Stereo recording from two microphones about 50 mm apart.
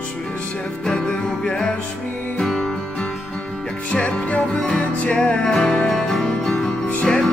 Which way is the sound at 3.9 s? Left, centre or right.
Left.